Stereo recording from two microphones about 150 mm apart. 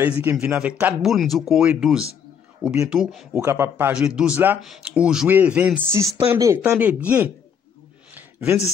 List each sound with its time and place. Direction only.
0.0 s speech: 15° right (ahead or behind)
3.4 s speech: 15° right (ahead or behind)
8.1 s a sound: 10° right (ahead or behind)